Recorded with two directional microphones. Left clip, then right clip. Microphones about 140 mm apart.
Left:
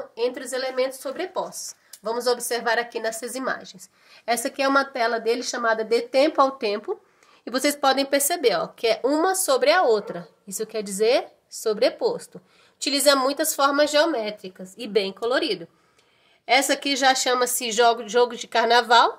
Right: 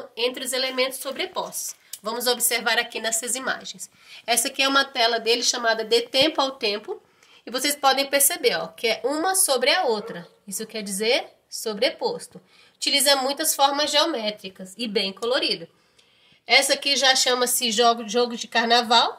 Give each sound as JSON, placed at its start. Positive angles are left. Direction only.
{"t": 0.1, "sound": "speech", "side_deg": 65}
{"t": 2.0, "sound": "a woman's voice", "side_deg": 55}
{"t": 7.4, "sound": "speech", "side_deg": 90}
{"t": 12.8, "sound": "a woman's voice", "side_deg": 90}
{"t": 16.4, "sound": "a woman's voice", "side_deg": 90}